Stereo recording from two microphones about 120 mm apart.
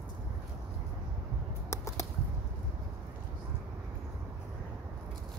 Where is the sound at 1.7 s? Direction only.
25° left (ahead or behind).